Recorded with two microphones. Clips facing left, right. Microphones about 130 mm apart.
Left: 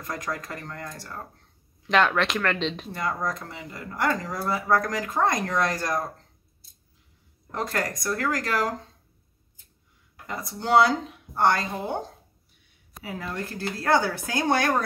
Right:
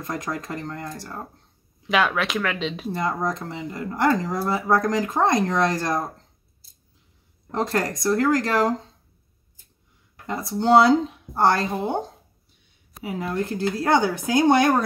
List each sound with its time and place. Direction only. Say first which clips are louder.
0.0 s speech: right 3 dB; 25° right (ahead or behind)
1.9 s speech: even; 5° right (ahead or behind)
2.9 s speech: right 4 dB; 25° right (ahead or behind)
7.5 s speech: right 5 dB; 25° right (ahead or behind)
10.2 s speech: right 8 dB; 25° right (ahead or behind)
13.0 s speech: right 6 dB; 20° right (ahead or behind)